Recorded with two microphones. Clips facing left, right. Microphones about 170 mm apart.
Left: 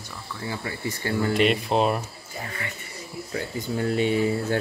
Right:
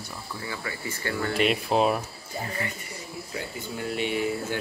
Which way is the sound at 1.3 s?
Centre (ahead or behind).